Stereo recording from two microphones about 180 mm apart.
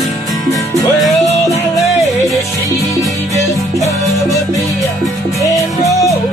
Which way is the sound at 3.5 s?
15° left (ahead or behind).